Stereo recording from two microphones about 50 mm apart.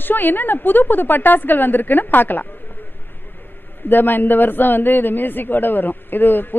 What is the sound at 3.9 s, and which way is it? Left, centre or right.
A man's voice, left.